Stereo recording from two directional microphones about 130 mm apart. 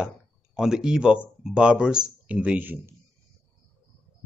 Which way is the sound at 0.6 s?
5° right (ahead or behind).